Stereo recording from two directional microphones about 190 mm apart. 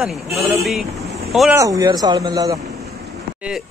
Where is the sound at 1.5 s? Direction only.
15° right (ahead or behind).